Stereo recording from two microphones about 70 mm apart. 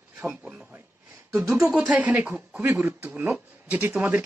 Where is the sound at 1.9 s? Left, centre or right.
Right.